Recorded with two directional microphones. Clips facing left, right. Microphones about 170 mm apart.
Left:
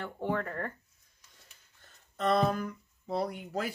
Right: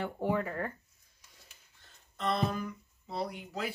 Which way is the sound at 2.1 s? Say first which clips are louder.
Left 4 dB; 50° left (ahead or behind).